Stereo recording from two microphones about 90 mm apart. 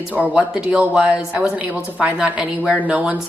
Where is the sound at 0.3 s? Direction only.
15° right (ahead or behind).